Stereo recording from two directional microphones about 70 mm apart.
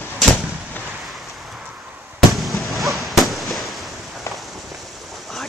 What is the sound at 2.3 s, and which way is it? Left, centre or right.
Fireworks, centre.